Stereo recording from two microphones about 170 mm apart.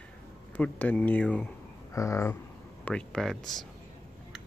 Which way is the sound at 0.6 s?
10° left (ahead or behind).